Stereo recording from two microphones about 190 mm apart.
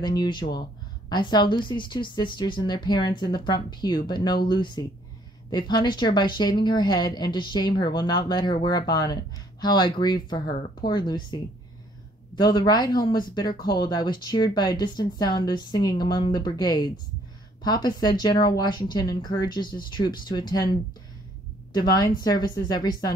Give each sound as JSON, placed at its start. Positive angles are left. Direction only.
{"t": 0.0, "sound": "a woman's voice", "side_deg": 20}
{"t": 21.7, "sound": "a woman's voice", "side_deg": 20}